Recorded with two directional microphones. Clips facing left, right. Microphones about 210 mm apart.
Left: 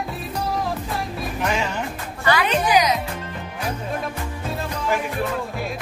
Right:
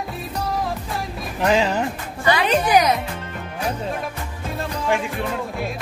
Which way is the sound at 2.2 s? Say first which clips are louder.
Right 1 dB; 20° right (ahead or behind).